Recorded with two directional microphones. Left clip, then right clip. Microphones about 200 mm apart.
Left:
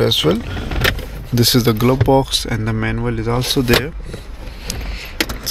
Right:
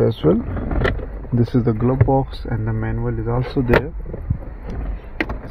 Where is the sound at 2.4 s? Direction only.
20° left (ahead or behind).